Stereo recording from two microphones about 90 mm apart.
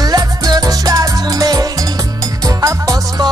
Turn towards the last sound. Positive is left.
turn(degrees=-40)  # may be behind; listen again after turning